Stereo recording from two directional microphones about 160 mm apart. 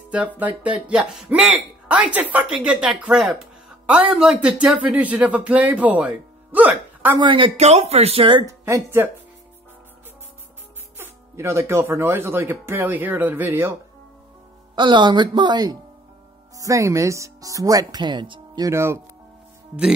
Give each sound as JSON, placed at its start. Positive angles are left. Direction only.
{"t": 0.4, "sound": "speech", "side_deg": -10}
{"t": 7.2, "sound": "speech", "side_deg": -30}
{"t": 8.5, "sound": "speech", "side_deg": -20}
{"t": 11.0, "sound": "speech", "side_deg": -15}
{"t": 14.8, "sound": "speech", "side_deg": -30}